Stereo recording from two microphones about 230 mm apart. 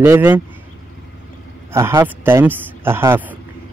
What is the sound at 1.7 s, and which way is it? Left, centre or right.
Speech, centre.